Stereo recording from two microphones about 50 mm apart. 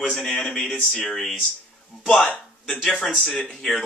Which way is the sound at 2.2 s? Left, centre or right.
Left.